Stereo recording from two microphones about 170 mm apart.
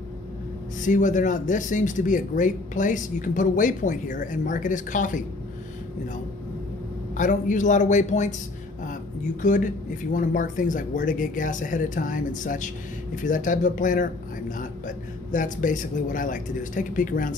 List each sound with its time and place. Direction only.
0.8 s speech: 50° left (ahead or behind)
7.2 s speech: 50° left (ahead or behind)
9.4 s speech: 50° left (ahead or behind)